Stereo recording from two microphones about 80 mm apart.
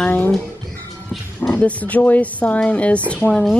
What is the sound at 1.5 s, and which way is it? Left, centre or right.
Speech, centre.